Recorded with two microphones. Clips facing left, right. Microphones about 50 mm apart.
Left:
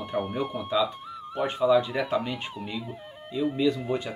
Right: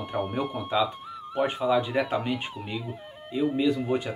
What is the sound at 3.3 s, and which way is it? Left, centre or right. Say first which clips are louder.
Speech: right 1 dB; right.